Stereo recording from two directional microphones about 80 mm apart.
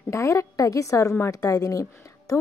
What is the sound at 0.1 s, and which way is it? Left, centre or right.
A woman's voice, left.